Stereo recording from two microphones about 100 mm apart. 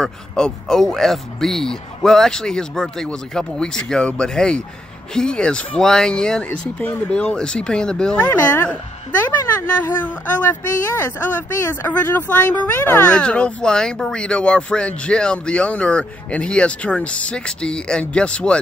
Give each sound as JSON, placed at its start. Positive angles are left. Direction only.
{"t": 0.0, "sound": "speech", "side_deg": 5}